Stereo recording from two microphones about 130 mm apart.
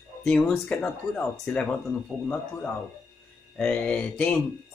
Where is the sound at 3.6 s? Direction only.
10° left (ahead or behind).